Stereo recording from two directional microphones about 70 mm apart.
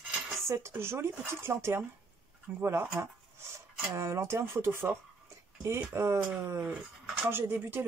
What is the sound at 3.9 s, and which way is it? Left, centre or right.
Speech, right.